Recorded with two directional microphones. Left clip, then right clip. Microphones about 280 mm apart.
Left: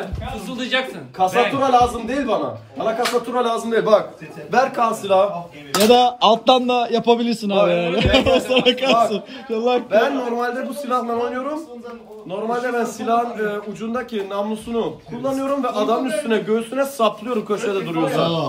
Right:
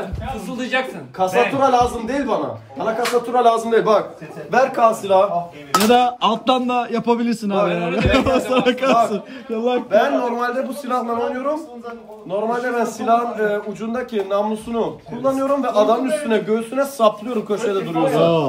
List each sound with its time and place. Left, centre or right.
0.5 s a man's voice: centre
5.9 s speech: centre
7.5 s a man's voice: centre
9.7 s speech: centre
10.1 s a man's voice: centre